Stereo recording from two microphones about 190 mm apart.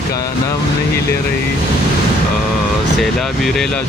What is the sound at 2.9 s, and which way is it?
Speech, centre (ahead or behind).